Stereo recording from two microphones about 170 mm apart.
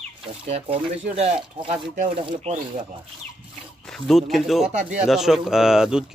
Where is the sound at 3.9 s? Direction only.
Centre (ahead or behind).